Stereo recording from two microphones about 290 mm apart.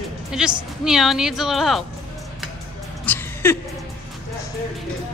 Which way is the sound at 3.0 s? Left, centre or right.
Centre.